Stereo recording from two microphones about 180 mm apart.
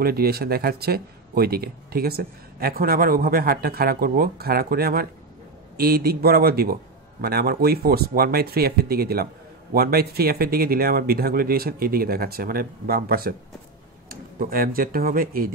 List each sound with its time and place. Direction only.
0.0 s a man's voice: 55° right (ahead or behind)